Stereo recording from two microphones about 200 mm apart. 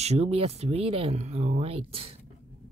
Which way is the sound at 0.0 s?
30° right (ahead or behind).